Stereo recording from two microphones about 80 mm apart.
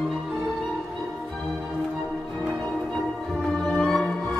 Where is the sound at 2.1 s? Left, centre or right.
Centre.